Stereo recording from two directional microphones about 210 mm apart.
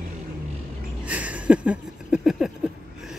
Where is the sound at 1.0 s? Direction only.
5° right (ahead or behind).